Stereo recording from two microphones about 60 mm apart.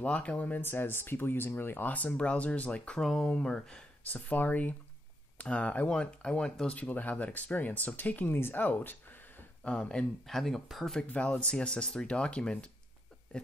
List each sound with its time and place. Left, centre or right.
0.0 s speech: left
3.0 s speech: centre
4.0 s speech: left; by 6.7 s centre
6.7 s speech: left
9.8 s speech: centre
10.2 s speech: centre
11.1 s speech: left
13.3 s a sound: centre